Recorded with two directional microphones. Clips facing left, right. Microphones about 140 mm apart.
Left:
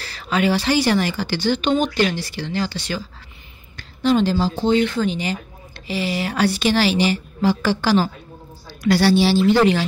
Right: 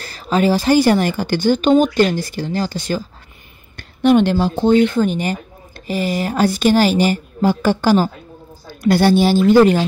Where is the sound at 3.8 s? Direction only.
60° right (ahead or behind).